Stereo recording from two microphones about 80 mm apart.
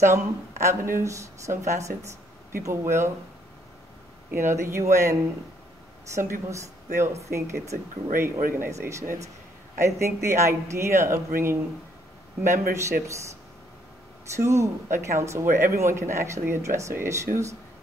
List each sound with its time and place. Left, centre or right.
0.7 s speech: right
4.3 s speech: right
6.1 s speech: right
14.3 s speech: right